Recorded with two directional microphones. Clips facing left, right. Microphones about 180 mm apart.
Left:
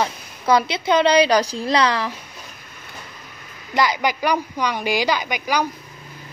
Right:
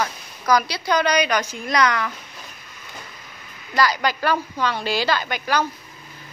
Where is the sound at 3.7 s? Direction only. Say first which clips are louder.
Left 1 dB; 20° left (ahead or behind).